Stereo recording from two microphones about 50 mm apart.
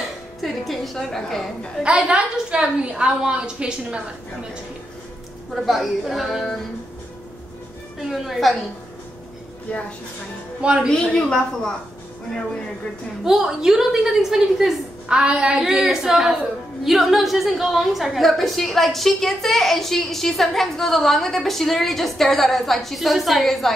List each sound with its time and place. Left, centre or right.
0.4 s a woman's voice: centre
1.8 s a woman's voice: centre
5.5 s a woman's voice: centre
8.1 s a woman's voice: centre
9.7 s a woman's voice: left
10.6 s a woman's voice: centre
11.1 s a woman's voice: centre
13.2 s a woman's voice: centre
15.0 s a woman's voice: centre
15.8 s a woman's voice: centre